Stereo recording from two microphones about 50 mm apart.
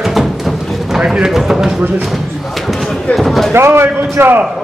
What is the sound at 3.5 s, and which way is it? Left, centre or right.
Speech, right.